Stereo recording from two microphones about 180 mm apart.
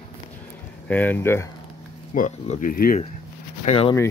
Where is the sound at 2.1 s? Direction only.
45° left (ahead or behind).